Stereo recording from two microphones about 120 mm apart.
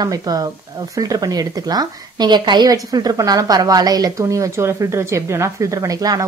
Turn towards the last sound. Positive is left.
turn(degrees=-30)  # may be behind; listen again after turning